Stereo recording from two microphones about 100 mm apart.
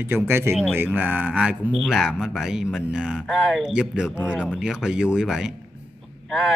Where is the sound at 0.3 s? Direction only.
25° right (ahead or behind).